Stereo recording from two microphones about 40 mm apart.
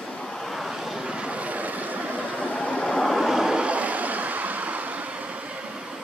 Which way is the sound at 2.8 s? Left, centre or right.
Centre.